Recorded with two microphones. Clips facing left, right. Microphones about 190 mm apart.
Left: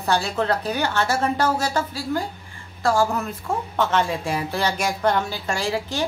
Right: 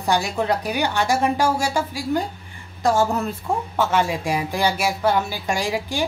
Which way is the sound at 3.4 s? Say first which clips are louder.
Even; 10° right (ahead or behind).